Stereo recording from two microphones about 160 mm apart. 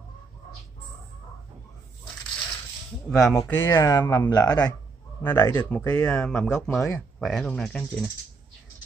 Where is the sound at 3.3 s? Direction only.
20° left (ahead or behind).